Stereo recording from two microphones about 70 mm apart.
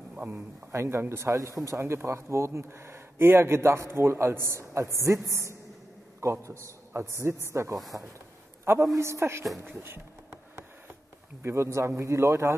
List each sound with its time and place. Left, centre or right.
0.1 s a man's voice: right
0.7 s speech: right
1.3 s a woman's voice: right
7.9 s speech: right
8.9 s a woman's voice: right
9.6 s bee: right
11.4 s a woman's voice: right